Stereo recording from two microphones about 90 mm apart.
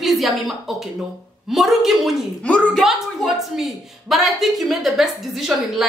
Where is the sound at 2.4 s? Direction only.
15° left (ahead or behind).